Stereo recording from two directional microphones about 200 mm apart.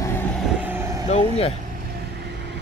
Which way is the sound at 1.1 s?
30° left (ahead or behind).